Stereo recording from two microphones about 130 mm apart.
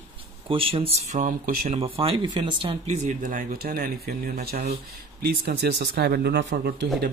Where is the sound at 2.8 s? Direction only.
65° right (ahead or behind); by 4.8 s 90° right.